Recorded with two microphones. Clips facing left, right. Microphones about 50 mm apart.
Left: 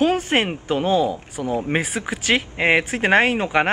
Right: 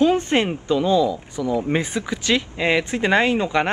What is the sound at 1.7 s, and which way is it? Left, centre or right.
Speech, left.